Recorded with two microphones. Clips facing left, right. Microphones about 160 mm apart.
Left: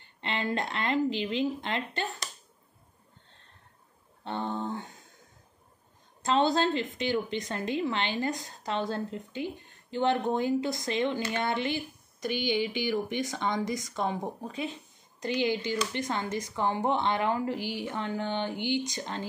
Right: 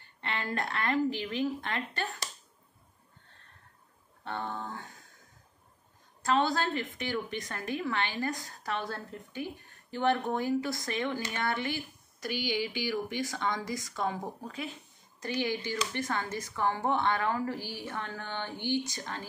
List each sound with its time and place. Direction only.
0.0 s a woman's voice: 20° left (ahead or behind)
4.2 s a woman's voice: 20° left (ahead or behind)
6.2 s a woman's voice: 25° left (ahead or behind)